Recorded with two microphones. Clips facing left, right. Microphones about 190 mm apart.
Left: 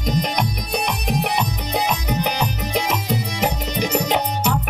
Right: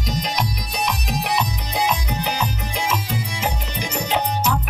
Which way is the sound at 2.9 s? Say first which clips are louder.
Left 2 dB; 65° left (ahead or behind).